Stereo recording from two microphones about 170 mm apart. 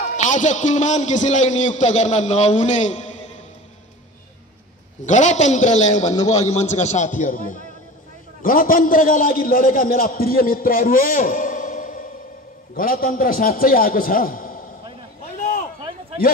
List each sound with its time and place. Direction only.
0.2 s a man's voice: 45° left (ahead or behind)
5.0 s a man's voice: 45° left (ahead or behind)
15.3 s a sound: 45° left (ahead or behind)